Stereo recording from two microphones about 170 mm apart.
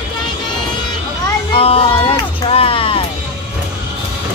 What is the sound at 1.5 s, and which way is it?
Music, 35° left (ahead or behind).